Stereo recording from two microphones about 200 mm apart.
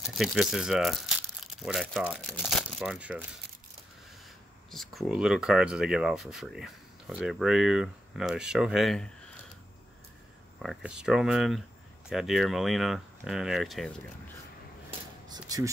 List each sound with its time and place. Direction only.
0.0 s speech: centre (ahead or behind)
4.6 s speech: centre (ahead or behind)
10.6 s speech: centre (ahead or behind)
14.9 s a sound: 20° right (ahead or behind)